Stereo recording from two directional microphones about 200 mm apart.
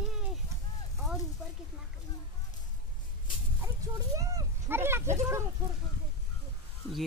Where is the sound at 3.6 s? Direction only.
15° right (ahead or behind).